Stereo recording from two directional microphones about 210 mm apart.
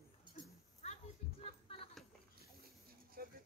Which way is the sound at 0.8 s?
30° left (ahead or behind).